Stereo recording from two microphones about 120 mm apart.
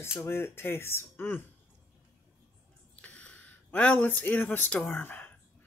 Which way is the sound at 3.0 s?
10° left (ahead or behind).